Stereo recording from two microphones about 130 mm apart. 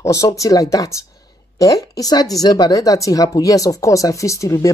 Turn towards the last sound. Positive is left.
turn(degrees=25)  # may be behind; listen again after turning